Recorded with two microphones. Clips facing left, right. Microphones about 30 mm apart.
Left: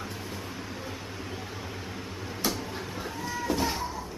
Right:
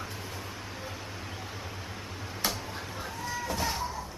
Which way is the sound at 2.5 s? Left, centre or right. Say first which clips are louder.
Left 3 dB; centre.